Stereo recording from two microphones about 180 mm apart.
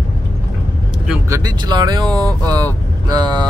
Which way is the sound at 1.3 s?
20° right (ahead or behind).